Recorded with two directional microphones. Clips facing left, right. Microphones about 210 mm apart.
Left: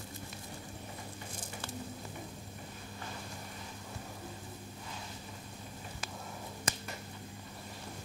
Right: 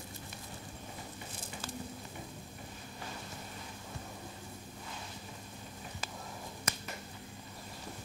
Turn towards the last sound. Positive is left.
turn(degrees=30)  # may be behind; listen again after turning